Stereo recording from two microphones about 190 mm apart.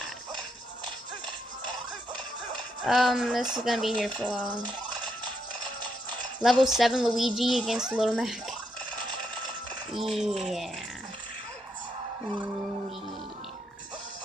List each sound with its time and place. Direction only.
2.8 s speech: centre (ahead or behind)
4.6 s coin: 25° right (ahead or behind)
6.6 s speech: centre (ahead or behind)
9.9 s speech: centre (ahead or behind)